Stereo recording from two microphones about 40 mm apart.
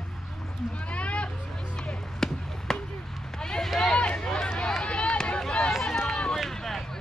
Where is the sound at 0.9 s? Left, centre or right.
Left.